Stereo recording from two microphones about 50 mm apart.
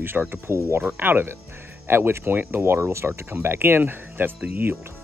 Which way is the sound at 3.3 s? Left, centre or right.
Right.